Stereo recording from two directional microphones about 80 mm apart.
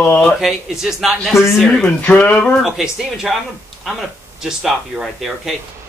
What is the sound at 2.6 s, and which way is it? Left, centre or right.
Speech, centre.